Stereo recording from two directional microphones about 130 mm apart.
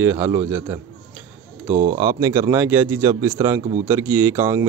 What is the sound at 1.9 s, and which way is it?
Speech, 30° right (ahead or behind).